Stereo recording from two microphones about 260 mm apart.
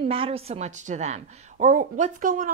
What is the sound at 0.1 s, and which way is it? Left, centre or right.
A woman's voice, right.